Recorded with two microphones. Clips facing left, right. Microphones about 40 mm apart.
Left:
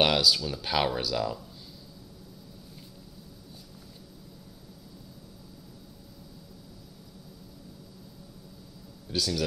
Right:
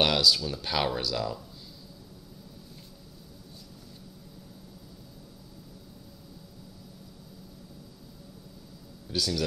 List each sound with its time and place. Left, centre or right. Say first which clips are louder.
0.0 s speech: even; centre
9.1 s speech: even; centre